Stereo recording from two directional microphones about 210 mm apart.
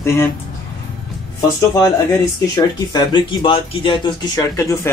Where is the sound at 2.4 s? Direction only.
20° left (ahead or behind).